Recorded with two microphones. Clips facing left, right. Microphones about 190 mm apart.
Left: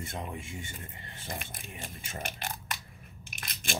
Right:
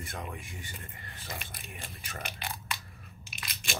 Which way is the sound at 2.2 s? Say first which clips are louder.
Left 2 dB; 45° left (ahead or behind).